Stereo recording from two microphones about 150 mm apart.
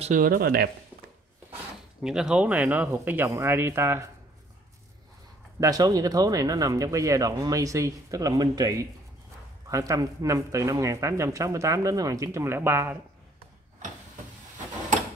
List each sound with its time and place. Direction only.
0.0 s speech: 60° right (ahead or behind); by 0.7 s 85° right
2.0 s speech: 5° right (ahead or behind)
5.6 s speech: 25° right (ahead or behind)